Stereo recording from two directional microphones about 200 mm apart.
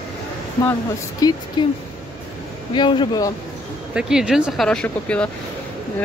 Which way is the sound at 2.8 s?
25° left (ahead or behind).